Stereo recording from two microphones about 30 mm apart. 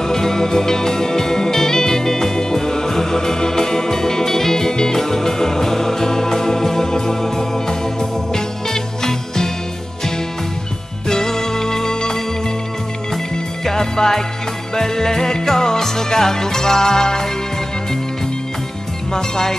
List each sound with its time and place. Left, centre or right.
0.0 s music: centre
11.1 s music: centre
13.7 s music: centre
19.1 s speech: left